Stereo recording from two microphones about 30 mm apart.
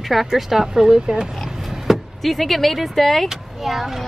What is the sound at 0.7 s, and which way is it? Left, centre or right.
Speech, right.